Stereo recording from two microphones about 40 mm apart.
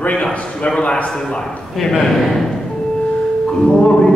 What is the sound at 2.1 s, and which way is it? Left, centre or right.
Speech, centre.